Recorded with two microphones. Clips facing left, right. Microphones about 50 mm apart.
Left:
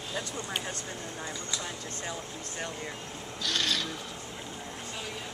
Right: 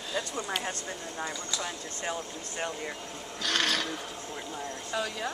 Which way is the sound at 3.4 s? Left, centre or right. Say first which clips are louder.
Right 2 dB; right.